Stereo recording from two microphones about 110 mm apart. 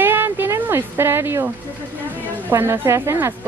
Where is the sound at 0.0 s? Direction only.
20° right (ahead or behind).